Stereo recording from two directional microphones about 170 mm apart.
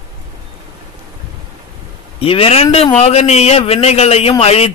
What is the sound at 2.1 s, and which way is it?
A man's voice, 35° left (ahead or behind).